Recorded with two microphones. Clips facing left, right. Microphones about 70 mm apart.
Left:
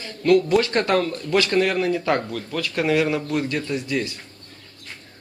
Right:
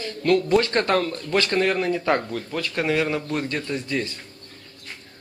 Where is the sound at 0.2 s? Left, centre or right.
Centre.